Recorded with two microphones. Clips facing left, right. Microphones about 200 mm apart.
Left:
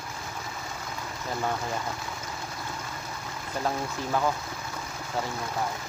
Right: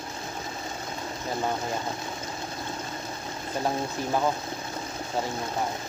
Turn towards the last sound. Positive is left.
turn(degrees=-20)  # may be behind; listen again after turning